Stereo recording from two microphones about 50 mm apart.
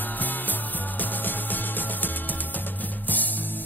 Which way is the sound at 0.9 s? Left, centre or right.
Left.